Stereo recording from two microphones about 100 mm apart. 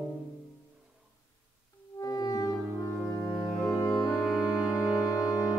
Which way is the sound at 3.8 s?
35° left (ahead or behind).